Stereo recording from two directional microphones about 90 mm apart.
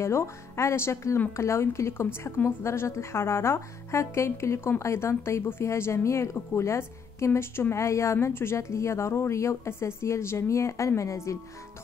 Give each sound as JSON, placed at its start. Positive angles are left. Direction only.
{"t": 0.0, "sound": "speech", "side_deg": 30}